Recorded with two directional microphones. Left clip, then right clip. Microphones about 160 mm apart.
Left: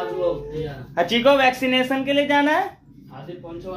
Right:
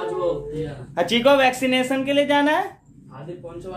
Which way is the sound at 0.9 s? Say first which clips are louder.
Even; 15° right (ahead or behind).